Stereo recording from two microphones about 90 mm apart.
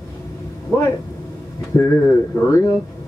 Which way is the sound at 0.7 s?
40° left (ahead or behind).